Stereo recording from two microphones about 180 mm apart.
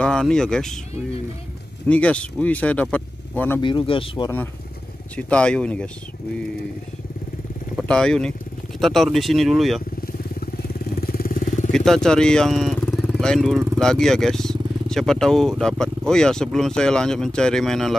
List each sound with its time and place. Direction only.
0.0 s speech: 5° left (ahead or behind)
1.9 s speech: 5° left (ahead or behind)
3.6 s speech: 30° left (ahead or behind)
5.1 s speech: 5° left (ahead or behind)
7.7 s speech: 5° left (ahead or behind)
10.0 s vehicle: 60° left (ahead or behind)
11.7 s speech: centre (ahead or behind)